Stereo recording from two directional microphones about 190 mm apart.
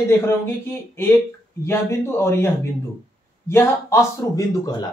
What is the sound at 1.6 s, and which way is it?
Speech, 15° left (ahead or behind).